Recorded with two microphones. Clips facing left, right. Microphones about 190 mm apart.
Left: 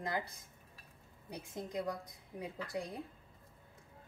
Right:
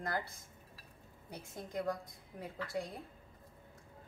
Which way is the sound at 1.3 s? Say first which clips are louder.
Left 1 dB; 20° left (ahead or behind).